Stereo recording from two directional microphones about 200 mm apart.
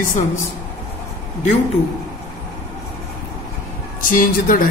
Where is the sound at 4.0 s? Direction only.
45° left (ahead or behind).